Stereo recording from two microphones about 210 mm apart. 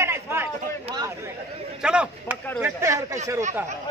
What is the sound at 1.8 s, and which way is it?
Speech, 5° right (ahead or behind).